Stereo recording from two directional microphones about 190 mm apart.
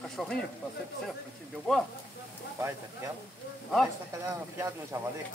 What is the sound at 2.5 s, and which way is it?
Speech, 15° right (ahead or behind).